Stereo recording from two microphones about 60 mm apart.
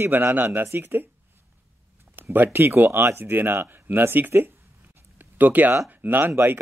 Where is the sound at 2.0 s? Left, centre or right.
Right.